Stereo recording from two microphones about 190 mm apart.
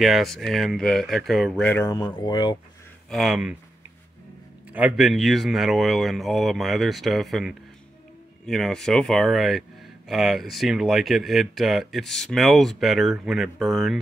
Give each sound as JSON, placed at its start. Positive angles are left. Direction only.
{"t": 0.0, "sound": "speech", "side_deg": 0}
{"t": 2.0, "sound": "speech", "side_deg": 25}
{"t": 3.1, "sound": "speech", "side_deg": 0}
{"t": 4.7, "sound": "speech", "side_deg": -5}